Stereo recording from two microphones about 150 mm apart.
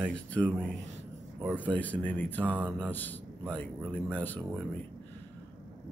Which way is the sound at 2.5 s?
10° right (ahead or behind).